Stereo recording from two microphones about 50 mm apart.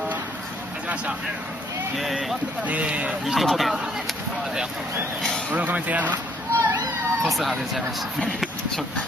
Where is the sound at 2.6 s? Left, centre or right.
Right.